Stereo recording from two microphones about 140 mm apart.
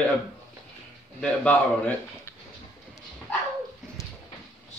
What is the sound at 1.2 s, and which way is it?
Speech, 5° left (ahead or behind).